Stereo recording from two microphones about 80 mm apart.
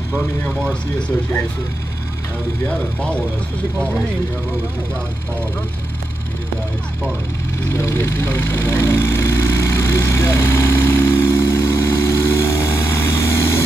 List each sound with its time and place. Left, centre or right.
7.6 s vehicle: left